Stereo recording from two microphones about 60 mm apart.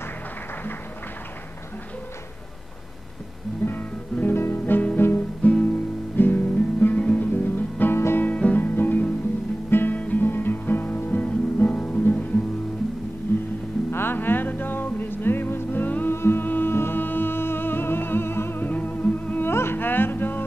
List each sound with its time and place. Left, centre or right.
3.6 s music: left
5.4 s guitar: left
7.0 s music: left
7.3 s guitar: left
7.8 s music: left
8.3 s music: left
9.7 s guitar: left
9.9 s music: left
13.3 s music: left
19.5 s music: left